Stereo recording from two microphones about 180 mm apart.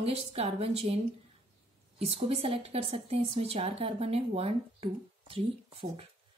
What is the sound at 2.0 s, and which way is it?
A woman's voice, 35° right (ahead or behind).